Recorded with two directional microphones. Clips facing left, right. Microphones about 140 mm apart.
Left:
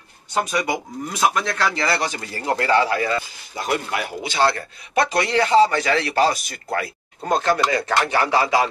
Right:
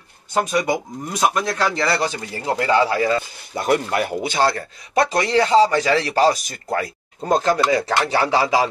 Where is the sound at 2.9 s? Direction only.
25° right (ahead or behind).